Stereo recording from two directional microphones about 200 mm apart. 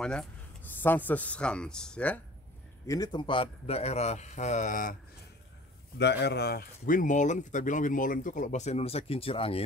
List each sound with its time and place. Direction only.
0.0 s a man's voice: 5° left (ahead or behind)
2.9 s speech: 20° left (ahead or behind); by 4.9 s 40° left (ahead or behind)
5.9 s speech: 55° left (ahead or behind); by 9.7 s 30° left (ahead or behind)